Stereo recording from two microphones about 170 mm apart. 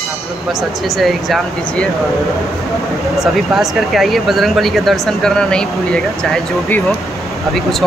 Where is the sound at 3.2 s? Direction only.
Centre (ahead or behind).